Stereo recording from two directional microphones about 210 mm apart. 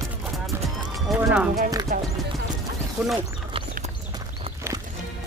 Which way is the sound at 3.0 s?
10° right (ahead or behind).